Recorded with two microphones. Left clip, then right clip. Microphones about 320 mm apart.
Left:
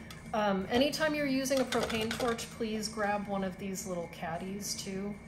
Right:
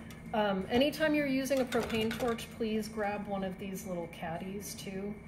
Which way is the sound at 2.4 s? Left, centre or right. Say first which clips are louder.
Right 1 dB; centre.